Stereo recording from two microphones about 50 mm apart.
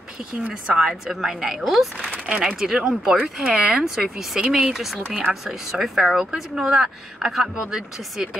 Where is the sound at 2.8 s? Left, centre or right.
Centre.